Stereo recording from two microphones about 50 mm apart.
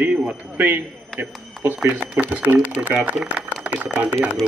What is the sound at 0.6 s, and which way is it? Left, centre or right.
Speech, right.